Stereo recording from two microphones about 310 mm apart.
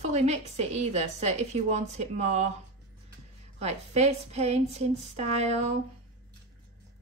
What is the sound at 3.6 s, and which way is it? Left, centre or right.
A woman's voice, right.